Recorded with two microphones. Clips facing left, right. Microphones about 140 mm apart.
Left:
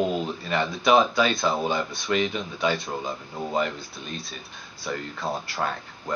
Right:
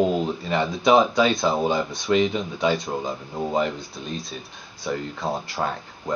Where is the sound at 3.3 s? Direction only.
10° right (ahead or behind).